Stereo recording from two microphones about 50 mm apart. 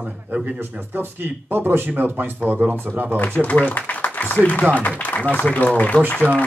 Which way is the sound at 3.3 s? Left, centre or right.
Left.